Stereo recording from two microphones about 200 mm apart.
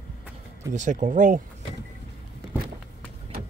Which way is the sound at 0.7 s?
40° right (ahead or behind).